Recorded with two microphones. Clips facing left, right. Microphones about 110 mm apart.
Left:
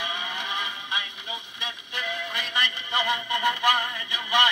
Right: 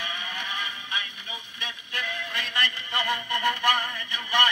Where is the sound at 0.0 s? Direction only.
15° left (ahead or behind).